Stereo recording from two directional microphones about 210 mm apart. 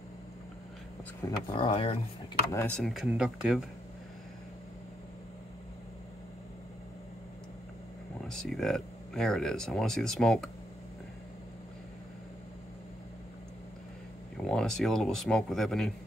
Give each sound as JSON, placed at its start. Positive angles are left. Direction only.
{"t": 1.2, "sound": "speech", "side_deg": 25}
{"t": 2.5, "sound": "speech", "side_deg": 5}
{"t": 8.3, "sound": "speech", "side_deg": 0}
{"t": 14.3, "sound": "a man's voice", "side_deg": 5}